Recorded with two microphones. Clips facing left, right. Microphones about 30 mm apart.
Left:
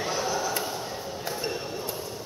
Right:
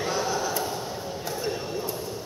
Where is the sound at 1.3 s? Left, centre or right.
Left.